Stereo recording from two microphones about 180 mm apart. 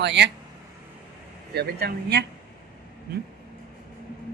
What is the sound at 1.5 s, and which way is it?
Speech, 65° right (ahead or behind).